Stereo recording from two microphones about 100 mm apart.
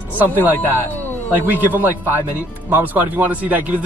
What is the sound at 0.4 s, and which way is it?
Speech, 20° right (ahead or behind).